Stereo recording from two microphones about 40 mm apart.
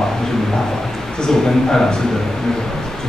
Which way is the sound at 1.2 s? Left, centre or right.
Centre.